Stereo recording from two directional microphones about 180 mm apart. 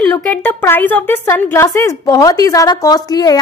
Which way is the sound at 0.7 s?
10° left (ahead or behind).